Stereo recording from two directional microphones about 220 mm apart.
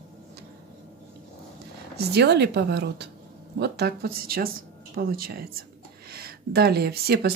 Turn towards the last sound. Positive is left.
turn(degrees=-45)  # may be behind; listen again after turning